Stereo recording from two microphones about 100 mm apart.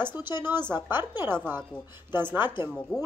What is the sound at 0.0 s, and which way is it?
A woman's voice, 20° right (ahead or behind).